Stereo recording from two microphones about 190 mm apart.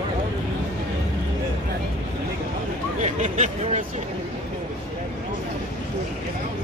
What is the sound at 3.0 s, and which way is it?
Speech, 40° right (ahead or behind).